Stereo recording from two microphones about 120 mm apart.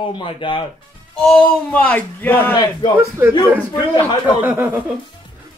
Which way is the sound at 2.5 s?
40° left (ahead or behind).